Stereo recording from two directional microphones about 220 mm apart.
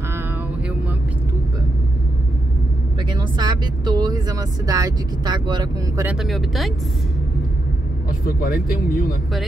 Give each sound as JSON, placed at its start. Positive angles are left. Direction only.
{"t": 3.1, "sound": "speech", "side_deg": -20}
{"t": 6.0, "sound": "speech", "side_deg": 0}
{"t": 8.3, "sound": "speech", "side_deg": 40}